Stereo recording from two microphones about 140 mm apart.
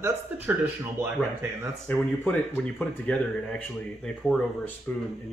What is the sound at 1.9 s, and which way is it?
Speech, 10° left (ahead or behind).